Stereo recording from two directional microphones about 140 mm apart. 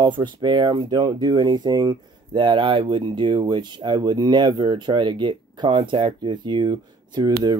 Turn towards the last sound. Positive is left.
turn(degrees=-30)  # may be behind; listen again after turning